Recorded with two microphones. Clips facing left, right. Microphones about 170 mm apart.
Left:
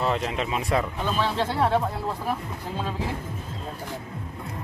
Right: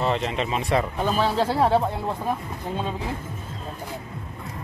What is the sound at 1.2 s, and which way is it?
Speech, 40° right (ahead or behind).